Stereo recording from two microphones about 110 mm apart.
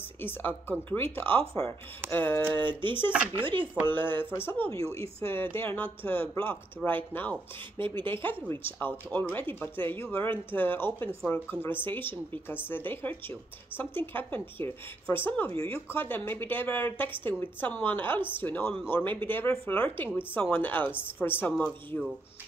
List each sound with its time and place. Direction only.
0.2 s speech: 20° left (ahead or behind)
2.6 s speech: 45° right (ahead or behind)
3.1 s speech: 10° right (ahead or behind)
3.8 s speech: 20° left (ahead or behind)
8.1 s speech: 50° right (ahead or behind)
8.5 s speech: 20° left (ahead or behind)